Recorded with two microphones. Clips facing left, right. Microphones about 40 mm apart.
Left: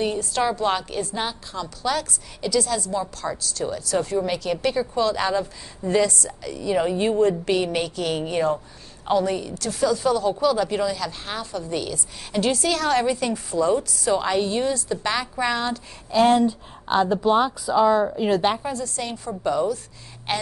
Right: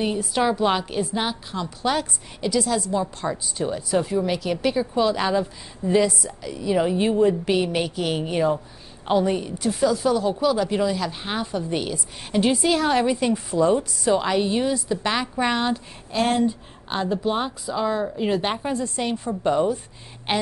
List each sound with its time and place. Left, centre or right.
0.0 s a woman's voice: centre
4.2 s a woman's voice: centre
9.0 s a woman's voice: centre
16.8 s speech: centre
18.5 s a woman's voice: right